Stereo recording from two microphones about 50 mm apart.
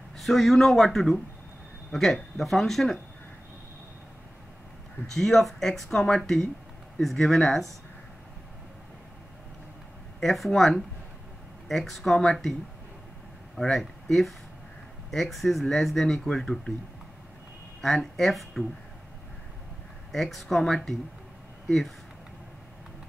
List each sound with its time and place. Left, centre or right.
0.2 s a man's voice: centre
5.0 s speech: centre
10.2 s speech: centre
13.6 s speech: centre
17.8 s speech: centre
20.1 s speech: centre